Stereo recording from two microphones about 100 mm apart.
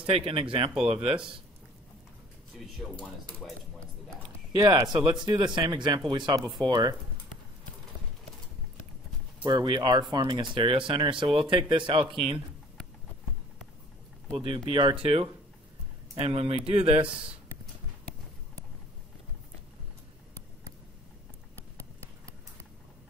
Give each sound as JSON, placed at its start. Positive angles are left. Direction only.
{"t": 0.1, "sound": "speech", "side_deg": -70}
{"t": 3.4, "sound": "speech", "side_deg": 0}
{"t": 4.5, "sound": "speech", "side_deg": -40}
{"t": 9.4, "sound": "speech", "side_deg": -50}
{"t": 14.3, "sound": "speech", "side_deg": -55}
{"t": 15.0, "sound": "speech", "side_deg": -75}